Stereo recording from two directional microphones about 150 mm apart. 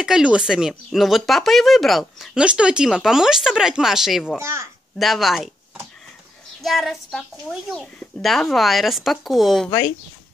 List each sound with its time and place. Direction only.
0.0 s speech: 5° right (ahead or behind)
4.4 s a child's voice: 20° right (ahead or behind)
4.9 s speech: centre (ahead or behind)
6.6 s speech: centre (ahead or behind)